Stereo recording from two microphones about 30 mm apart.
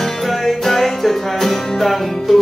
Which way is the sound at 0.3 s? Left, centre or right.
Centre.